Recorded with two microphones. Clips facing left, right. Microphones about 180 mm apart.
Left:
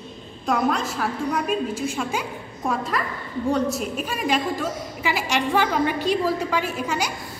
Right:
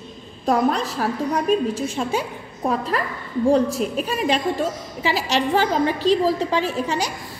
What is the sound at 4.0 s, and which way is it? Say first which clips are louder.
A woman's voice: right 2 dB; 30° right (ahead or behind).